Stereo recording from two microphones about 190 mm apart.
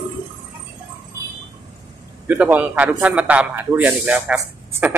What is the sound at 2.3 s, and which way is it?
Speech, 10° right (ahead or behind).